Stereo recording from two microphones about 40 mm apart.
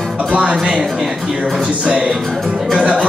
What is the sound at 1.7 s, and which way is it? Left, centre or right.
Music, right.